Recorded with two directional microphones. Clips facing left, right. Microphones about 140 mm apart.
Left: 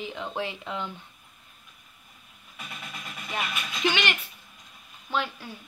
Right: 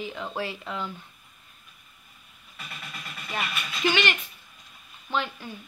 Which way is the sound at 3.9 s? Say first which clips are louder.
Right 2 dB; 15° left (ahead or behind).